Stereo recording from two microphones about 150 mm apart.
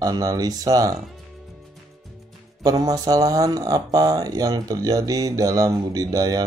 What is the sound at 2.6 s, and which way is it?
Speech, 25° right (ahead or behind).